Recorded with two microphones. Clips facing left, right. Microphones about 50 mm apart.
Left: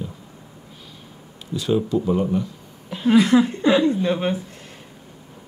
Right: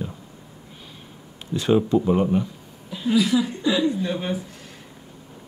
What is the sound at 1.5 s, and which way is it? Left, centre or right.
Speech, right.